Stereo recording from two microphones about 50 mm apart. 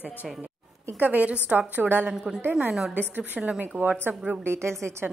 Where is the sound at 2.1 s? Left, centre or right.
Centre.